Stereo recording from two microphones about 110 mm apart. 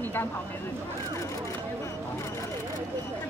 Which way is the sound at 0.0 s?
20° left (ahead or behind).